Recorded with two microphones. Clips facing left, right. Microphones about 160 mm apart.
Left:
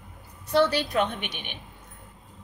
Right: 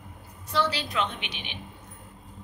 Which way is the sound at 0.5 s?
55° left (ahead or behind).